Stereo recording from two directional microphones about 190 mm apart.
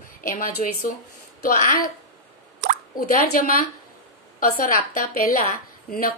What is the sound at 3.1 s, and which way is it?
A woman's voice, 50° left (ahead or behind).